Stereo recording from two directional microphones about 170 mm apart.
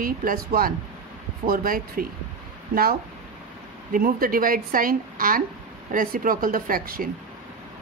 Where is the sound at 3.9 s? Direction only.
55° right (ahead or behind).